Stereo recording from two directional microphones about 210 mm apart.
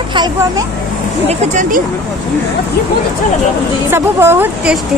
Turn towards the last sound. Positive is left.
turn(degrees=-10)  # may be behind; listen again after turning